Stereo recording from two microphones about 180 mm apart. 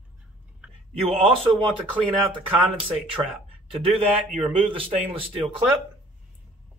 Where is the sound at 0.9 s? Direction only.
30° right (ahead or behind).